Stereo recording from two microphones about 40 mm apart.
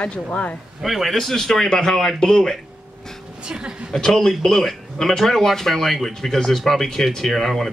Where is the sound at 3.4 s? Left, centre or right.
Right.